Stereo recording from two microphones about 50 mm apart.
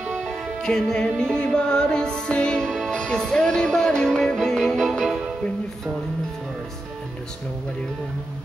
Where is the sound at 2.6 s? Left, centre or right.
Centre.